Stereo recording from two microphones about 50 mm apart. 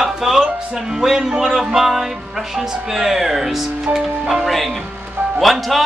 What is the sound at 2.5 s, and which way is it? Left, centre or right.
Speech, centre.